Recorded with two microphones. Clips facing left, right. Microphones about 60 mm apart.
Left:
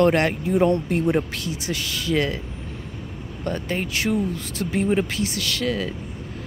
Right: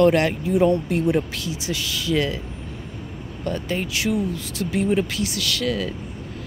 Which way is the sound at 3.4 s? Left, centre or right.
Left.